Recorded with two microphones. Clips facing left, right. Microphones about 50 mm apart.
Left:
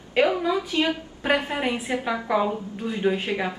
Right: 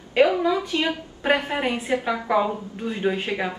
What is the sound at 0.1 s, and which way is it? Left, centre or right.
Speech, centre.